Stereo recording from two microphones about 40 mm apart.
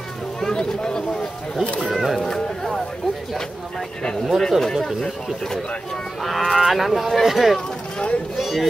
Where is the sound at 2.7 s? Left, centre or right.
Centre.